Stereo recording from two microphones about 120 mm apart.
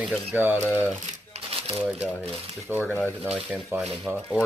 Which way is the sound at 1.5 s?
50° right (ahead or behind).